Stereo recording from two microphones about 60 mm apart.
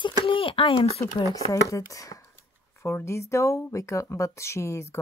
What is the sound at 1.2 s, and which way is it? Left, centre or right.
Speech, left.